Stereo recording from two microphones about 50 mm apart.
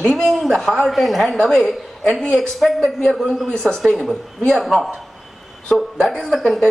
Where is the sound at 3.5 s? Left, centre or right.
Centre.